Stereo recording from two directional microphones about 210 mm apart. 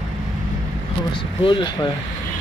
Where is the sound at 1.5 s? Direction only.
20° left (ahead or behind).